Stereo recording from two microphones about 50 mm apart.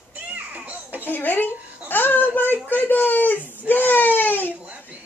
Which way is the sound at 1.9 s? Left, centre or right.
Left.